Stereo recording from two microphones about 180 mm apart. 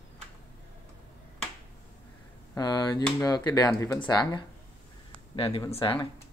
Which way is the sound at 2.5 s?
20° left (ahead or behind).